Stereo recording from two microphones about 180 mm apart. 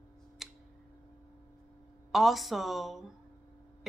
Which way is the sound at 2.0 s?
Centre (ahead or behind).